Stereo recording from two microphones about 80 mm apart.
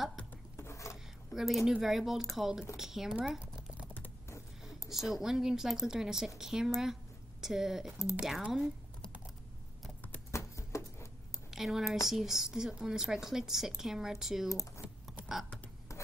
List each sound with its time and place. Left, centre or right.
0.6 s a sound: left
1.3 s a woman's voice: centre
3.2 s computer keyboard: centre
4.8 s a woman's voice: centre
10.3 s horse: left
11.5 s a woman's voice: centre
14.8 s typing: centre